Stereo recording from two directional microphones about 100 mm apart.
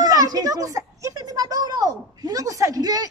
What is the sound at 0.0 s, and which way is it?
Speech, 40° right (ahead or behind).